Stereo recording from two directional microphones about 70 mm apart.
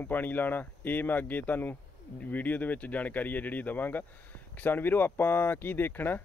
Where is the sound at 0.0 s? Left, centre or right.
Left.